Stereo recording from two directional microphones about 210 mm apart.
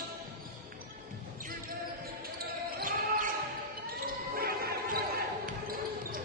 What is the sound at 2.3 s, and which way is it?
Basketball bounce, 45° right (ahead or behind).